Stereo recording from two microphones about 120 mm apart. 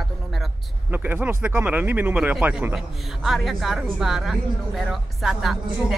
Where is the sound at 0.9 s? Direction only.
15° right (ahead or behind).